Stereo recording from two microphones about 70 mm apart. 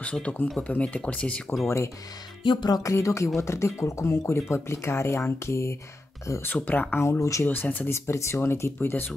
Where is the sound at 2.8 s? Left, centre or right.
Left.